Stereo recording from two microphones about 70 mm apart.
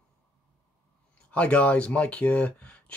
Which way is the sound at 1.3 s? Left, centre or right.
Centre.